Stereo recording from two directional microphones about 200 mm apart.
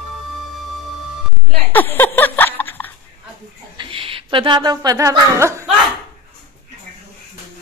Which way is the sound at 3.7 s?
25° right (ahead or behind).